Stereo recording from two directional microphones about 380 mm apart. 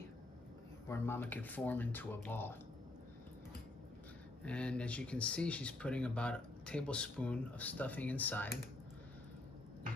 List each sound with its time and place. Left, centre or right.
0.8 s speech: centre
4.5 s speech: centre